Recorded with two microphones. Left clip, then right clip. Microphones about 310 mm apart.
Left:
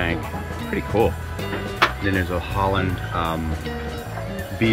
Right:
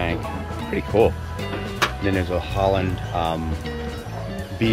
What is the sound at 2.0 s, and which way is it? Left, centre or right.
Speech, centre.